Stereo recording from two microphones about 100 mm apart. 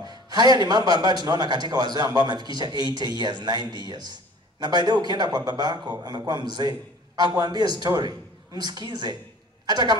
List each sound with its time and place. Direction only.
0.0 s a man's voice: 45° right (ahead or behind)